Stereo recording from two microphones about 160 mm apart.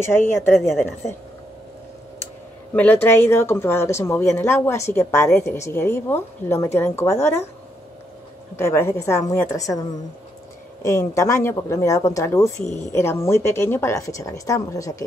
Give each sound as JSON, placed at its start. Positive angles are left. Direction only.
{"t": 0.0, "sound": "speech", "side_deg": 15}
{"t": 2.7, "sound": "speech", "side_deg": 10}
{"t": 8.5, "sound": "a woman's voice", "side_deg": 15}